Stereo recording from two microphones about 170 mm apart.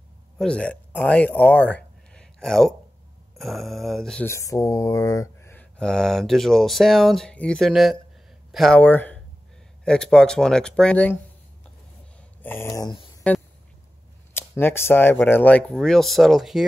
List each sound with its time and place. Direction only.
0.4 s speech: 5° left (ahead or behind)
4.3 s speech: 20° left (ahead or behind)
12.4 s speech: 10° left (ahead or behind)
14.3 s speech: 15° left (ahead or behind)